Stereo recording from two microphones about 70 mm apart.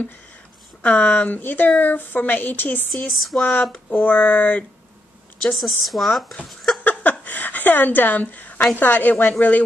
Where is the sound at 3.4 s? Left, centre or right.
Left.